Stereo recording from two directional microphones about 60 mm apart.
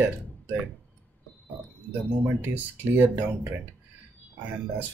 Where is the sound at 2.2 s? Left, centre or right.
Right.